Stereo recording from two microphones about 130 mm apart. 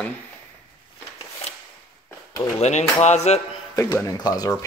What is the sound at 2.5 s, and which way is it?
Speech, 60° left (ahead or behind).